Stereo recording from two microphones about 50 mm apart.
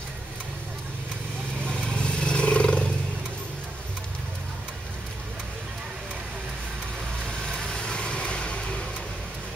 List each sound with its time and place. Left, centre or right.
1.7 s vehicle: centre
7.2 s vehicle: centre